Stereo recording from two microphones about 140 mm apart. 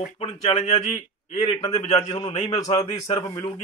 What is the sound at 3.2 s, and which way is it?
Speech, 25° left (ahead or behind).